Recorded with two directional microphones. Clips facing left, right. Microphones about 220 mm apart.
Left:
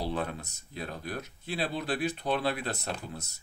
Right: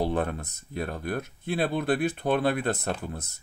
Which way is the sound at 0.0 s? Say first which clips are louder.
Right 6 dB; 50° right (ahead or behind).